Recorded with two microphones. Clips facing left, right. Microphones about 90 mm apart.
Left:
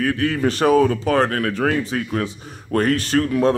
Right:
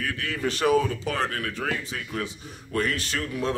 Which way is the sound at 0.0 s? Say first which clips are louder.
Left 9 dB; 40° left (ahead or behind).